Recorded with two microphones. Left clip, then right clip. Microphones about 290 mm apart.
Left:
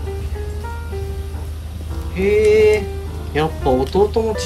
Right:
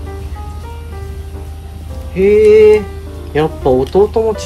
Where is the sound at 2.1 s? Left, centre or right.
Centre.